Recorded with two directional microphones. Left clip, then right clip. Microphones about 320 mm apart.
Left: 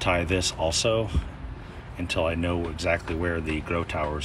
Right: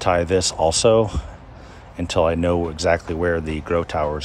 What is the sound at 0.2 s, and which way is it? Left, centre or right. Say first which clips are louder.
Speech: right 8 dB; right.